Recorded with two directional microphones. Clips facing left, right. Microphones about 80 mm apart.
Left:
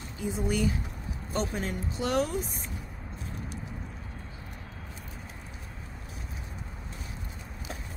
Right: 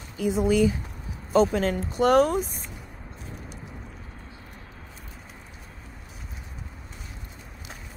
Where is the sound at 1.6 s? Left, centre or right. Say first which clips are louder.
Right 8 dB; right.